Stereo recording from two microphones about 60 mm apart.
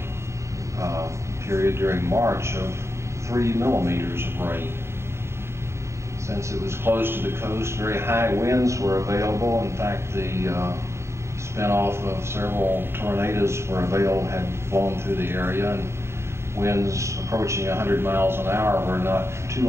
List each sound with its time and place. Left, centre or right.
0.7 s a man's voice: right
6.3 s a man's voice: right